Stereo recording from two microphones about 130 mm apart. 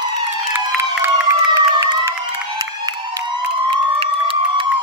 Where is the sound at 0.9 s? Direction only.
20° right (ahead or behind).